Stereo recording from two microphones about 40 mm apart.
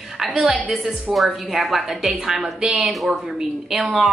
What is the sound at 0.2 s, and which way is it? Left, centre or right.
A woman's voice, centre.